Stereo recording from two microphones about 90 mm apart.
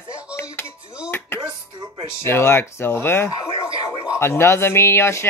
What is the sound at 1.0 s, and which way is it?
Chopping, 25° left (ahead or behind).